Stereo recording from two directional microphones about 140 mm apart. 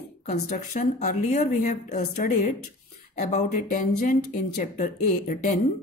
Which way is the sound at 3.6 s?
80° left.